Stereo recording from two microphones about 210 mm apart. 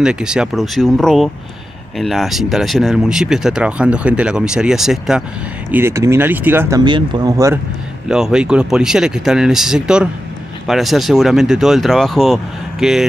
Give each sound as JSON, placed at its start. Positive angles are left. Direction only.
{"t": 0.0, "sound": "speech", "side_deg": -5}
{"t": 6.8, "sound": "speech", "side_deg": -20}
{"t": 8.1, "sound": "speech", "side_deg": -5}